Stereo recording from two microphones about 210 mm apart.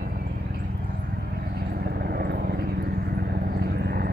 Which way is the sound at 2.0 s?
45° right (ahead or behind).